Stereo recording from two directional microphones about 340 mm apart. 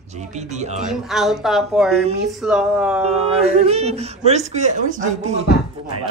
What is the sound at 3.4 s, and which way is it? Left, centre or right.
Speech, centre.